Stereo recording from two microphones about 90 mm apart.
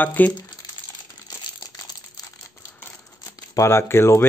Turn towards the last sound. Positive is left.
turn(degrees=30)  # may be behind; listen again after turning